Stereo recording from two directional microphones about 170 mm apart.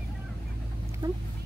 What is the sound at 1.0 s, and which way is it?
Speech, 25° right (ahead or behind).